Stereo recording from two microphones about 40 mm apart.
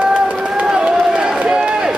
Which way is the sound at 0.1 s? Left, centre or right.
Right.